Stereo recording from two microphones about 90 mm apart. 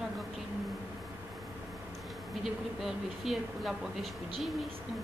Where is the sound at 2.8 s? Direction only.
5° right (ahead or behind).